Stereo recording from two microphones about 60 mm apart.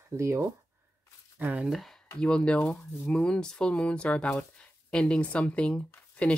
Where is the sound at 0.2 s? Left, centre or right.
Right.